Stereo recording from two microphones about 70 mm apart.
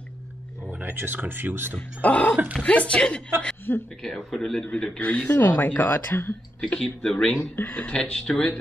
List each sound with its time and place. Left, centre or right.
0.7 s speech: right
1.8 s a woman's voice: left
3.7 s speech: left
4.0 s a woman's voice: centre
5.0 s speech: left
6.8 s a woman's voice: centre
7.5 s speech: left
7.9 s a woman's voice: centre